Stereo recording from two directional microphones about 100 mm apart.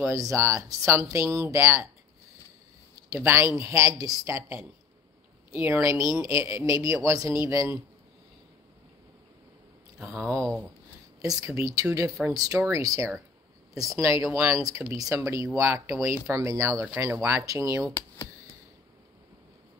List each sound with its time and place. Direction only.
0.0 s speech: 35° right (ahead or behind)
3.3 s speech: 30° right (ahead or behind)
5.5 s speech: 25° right (ahead or behind)
11.1 s speech: 35° right (ahead or behind)